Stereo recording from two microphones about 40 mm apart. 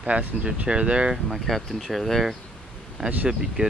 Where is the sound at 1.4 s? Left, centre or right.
Centre.